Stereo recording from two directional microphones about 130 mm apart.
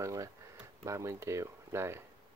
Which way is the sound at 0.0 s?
25° right (ahead or behind).